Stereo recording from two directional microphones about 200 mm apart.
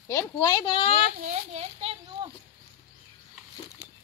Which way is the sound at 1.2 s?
30° right (ahead or behind).